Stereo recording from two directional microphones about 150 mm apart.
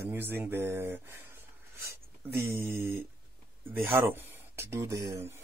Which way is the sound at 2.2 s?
90° right.